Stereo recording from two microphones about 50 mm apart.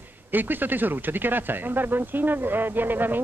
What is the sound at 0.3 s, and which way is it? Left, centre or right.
Speech, right.